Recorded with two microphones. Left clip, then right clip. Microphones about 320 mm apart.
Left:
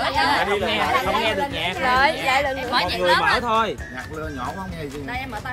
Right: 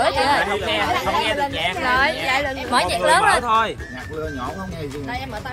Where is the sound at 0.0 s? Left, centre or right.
Centre.